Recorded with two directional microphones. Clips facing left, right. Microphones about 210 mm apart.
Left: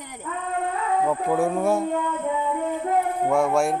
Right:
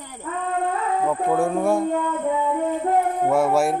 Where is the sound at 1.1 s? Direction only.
Centre (ahead or behind).